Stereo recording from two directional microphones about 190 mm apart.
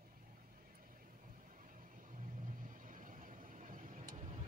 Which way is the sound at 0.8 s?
45° right (ahead or behind).